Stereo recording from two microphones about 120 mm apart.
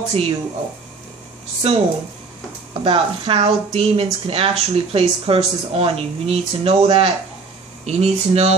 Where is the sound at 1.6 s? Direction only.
55° right (ahead or behind).